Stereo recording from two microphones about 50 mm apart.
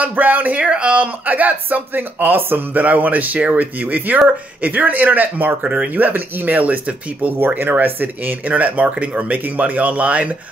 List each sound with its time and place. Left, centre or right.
0.0 s speech: right
0.6 s speech: right
5.9 s speech: right
7.3 s speech: right